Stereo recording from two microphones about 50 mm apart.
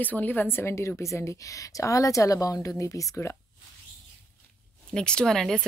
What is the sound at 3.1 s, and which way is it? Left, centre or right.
Speech, left.